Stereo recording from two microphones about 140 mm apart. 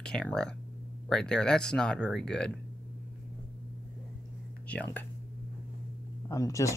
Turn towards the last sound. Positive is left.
turn(degrees=25)  # may be behind; listen again after turning